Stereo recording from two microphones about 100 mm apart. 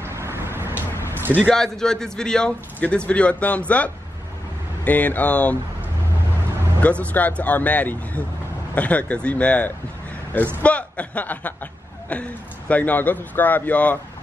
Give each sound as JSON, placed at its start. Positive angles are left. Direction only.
{"t": 0.0, "sound": "vehicle", "side_deg": -25}
{"t": 1.3, "sound": "a man's voice", "side_deg": 5}
{"t": 6.8, "sound": "a man's voice", "side_deg": 15}